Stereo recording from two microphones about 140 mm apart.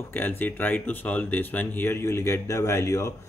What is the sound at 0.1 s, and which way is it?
Speech, 15° left (ahead or behind).